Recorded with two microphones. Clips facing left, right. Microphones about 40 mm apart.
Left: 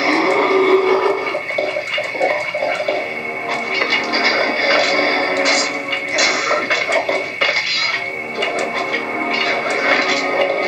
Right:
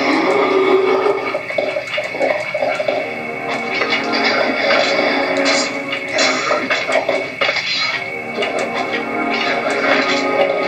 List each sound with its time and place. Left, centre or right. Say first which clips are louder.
0.0 s a sound: right 1 dB; centre
3.8 s music: even; centre
5.4 s music: even; centre
9.5 s music: right 1 dB; centre